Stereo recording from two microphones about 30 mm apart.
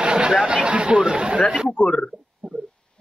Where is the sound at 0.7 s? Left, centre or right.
Right.